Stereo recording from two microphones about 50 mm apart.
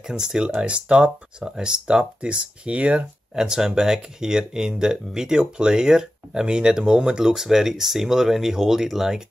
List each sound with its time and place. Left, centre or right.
0.0 s speech: centre
3.3 s speech: centre